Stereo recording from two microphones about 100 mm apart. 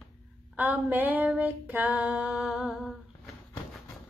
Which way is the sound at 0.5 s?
15° right (ahead or behind).